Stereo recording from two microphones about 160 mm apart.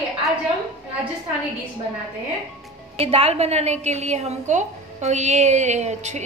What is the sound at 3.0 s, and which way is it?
A woman's voice, 40° right (ahead or behind).